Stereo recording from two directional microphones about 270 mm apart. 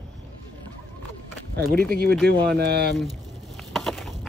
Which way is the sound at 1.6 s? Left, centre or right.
Right.